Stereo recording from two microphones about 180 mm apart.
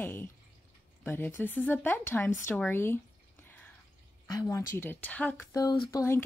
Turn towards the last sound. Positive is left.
turn(degrees=15)  # may be behind; listen again after turning